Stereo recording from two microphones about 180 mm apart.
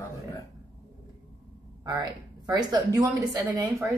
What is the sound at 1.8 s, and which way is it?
A woman's voice, 20° right (ahead or behind).